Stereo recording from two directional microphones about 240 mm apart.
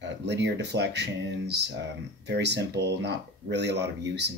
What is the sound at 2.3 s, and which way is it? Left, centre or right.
Speech, right.